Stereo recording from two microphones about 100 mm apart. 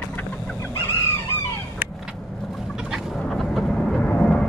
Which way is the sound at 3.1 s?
5° left (ahead or behind).